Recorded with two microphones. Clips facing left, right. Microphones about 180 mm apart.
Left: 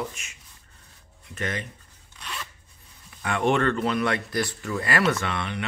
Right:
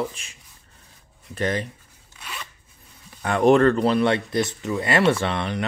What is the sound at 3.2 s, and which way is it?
Speech, 35° right (ahead or behind).